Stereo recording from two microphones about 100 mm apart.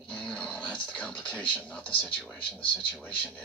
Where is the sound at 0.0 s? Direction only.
10° left (ahead or behind).